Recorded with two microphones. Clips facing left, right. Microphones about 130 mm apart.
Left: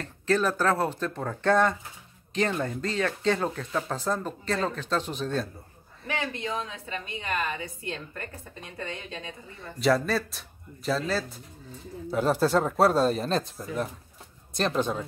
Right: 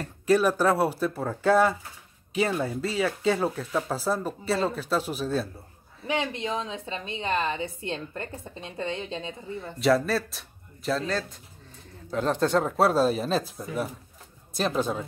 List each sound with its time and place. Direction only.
0.0 s speech: 10° right (ahead or behind)
6.0 s a woman's voice: 20° right (ahead or behind)
9.6 s speech: centre (ahead or behind)